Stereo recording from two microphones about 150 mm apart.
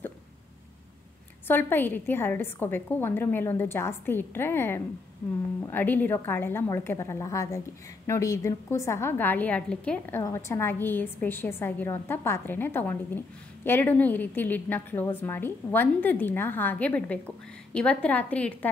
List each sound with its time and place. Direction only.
1.5 s a woman's voice: 15° left (ahead or behind)